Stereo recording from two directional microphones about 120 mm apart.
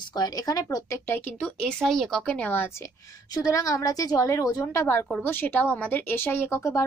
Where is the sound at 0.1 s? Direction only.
30° left (ahead or behind); by 2.7 s 15° left (ahead or behind).